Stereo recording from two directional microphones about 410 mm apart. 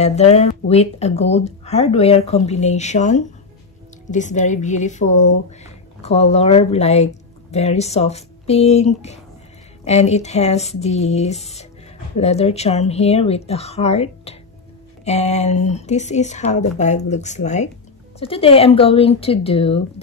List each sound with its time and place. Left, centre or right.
0.0 s speech: centre